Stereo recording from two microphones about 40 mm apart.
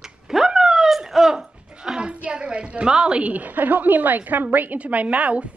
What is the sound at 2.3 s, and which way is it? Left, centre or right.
A woman's voice, right.